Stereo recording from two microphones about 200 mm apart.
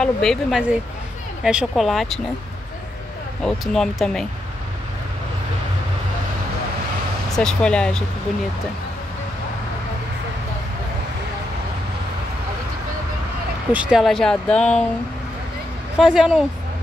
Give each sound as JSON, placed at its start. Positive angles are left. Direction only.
{"t": 0.0, "sound": "speech", "side_deg": 5}
{"t": 3.4, "sound": "speech", "side_deg": 0}
{"t": 7.3, "sound": "speech", "side_deg": 5}
{"t": 13.7, "sound": "speech", "side_deg": -5}
{"t": 16.0, "sound": "speech", "side_deg": -5}